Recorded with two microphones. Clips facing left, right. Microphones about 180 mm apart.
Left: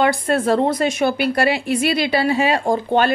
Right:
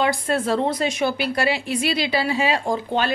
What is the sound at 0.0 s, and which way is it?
A woman's voice, 55° left (ahead or behind).